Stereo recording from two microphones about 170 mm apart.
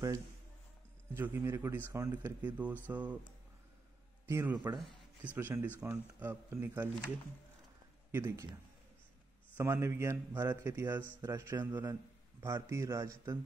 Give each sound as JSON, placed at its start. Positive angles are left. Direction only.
{"t": 1.1, "sound": "a man's voice", "side_deg": -15}
{"t": 4.3, "sound": "a man's voice", "side_deg": -15}
{"t": 8.1, "sound": "a man's voice", "side_deg": -15}
{"t": 9.6, "sound": "a man's voice", "side_deg": -15}